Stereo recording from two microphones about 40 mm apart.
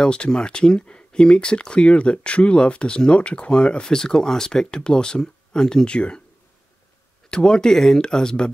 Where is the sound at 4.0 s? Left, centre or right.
Centre.